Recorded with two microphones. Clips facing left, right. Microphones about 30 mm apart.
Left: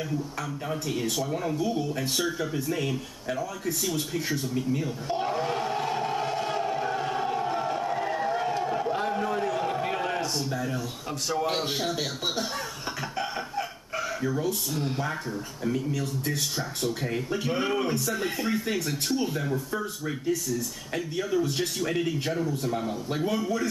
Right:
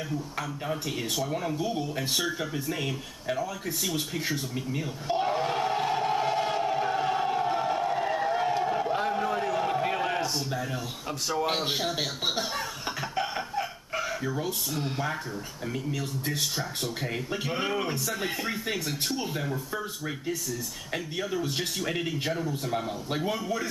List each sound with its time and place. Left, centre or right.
0.7 s a man's voice: centre
3.8 s a sound: centre
11.6 s a man's voice: centre
13.1 s a sound: centre
14.7 s a man's voice: centre
22.7 s a man's voice: centre